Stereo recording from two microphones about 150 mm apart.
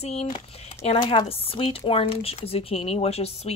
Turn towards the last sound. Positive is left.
turn(degrees=45)  # may be behind; listen again after turning